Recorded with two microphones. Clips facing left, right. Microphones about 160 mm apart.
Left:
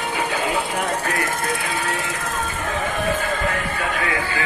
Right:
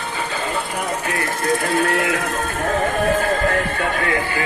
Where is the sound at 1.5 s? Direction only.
60° right (ahead or behind); by 2.3 s 80° right.